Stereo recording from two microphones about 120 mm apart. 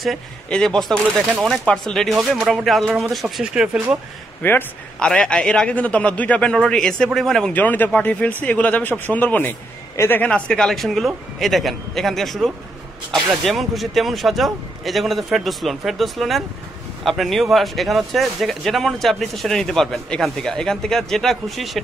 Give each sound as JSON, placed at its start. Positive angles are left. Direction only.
{"t": 0.0, "sound": "speech", "side_deg": 0}
{"t": 4.4, "sound": "a man's voice", "side_deg": 15}